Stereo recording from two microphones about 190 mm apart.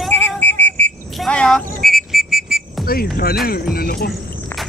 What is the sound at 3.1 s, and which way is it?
Speech, 50° left (ahead or behind).